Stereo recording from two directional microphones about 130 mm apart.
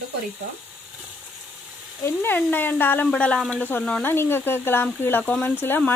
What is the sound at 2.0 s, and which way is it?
Speech, 15° left (ahead or behind).